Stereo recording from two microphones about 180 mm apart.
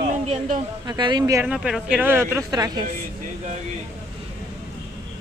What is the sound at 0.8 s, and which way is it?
Speech, 25° right (ahead or behind).